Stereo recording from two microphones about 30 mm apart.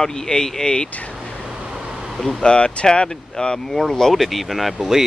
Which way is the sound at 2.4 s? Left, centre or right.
Left.